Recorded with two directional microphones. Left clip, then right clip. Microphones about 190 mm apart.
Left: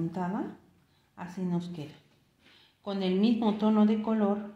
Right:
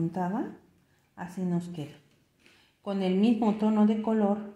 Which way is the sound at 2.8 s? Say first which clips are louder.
Right 1 dB; 20° right (ahead or behind).